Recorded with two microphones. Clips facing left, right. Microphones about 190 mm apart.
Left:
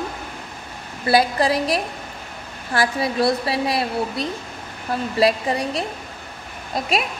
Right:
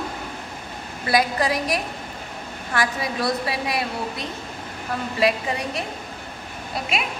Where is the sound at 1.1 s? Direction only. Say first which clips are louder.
Left 3 dB; 30° left (ahead or behind).